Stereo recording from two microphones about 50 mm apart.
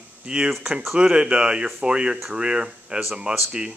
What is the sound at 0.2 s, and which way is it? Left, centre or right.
Speech, centre.